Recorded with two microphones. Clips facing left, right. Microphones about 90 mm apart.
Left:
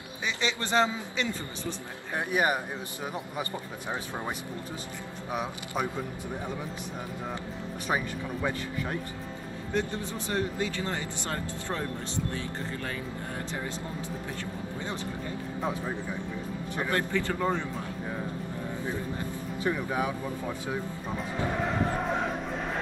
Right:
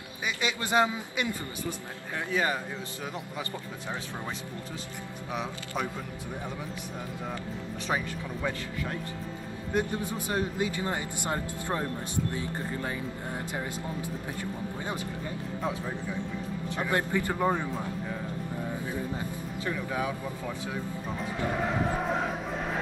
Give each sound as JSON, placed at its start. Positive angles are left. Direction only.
{"t": 0.4, "sound": "speech", "side_deg": -10}
{"t": 2.1, "sound": "speech", "side_deg": 20}
{"t": 5.3, "sound": "speech", "side_deg": 15}
{"t": 7.9, "sound": "speech", "side_deg": 10}
{"t": 9.8, "sound": "speech", "side_deg": -15}
{"t": 16.9, "sound": "speech", "side_deg": -15}
{"t": 19.6, "sound": "speech", "side_deg": 20}
{"t": 21.5, "sound": "crowd", "side_deg": 0}